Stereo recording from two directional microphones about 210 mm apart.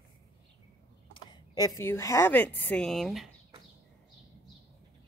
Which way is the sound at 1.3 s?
15° left (ahead or behind).